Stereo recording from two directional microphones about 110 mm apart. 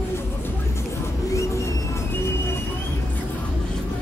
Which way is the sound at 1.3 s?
25° left (ahead or behind).